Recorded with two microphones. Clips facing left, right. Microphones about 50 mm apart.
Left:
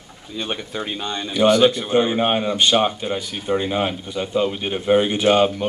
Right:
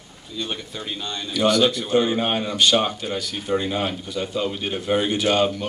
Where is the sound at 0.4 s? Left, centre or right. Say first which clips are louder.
Left 4 dB; left.